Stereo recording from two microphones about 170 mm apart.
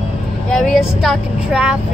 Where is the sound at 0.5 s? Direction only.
Centre (ahead or behind).